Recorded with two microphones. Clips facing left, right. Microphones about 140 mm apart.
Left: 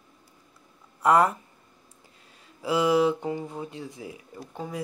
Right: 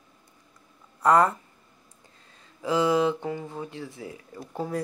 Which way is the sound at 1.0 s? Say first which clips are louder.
Even; 10° left (ahead or behind).